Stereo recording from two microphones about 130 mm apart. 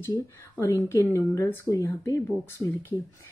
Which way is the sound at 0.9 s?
20° left (ahead or behind).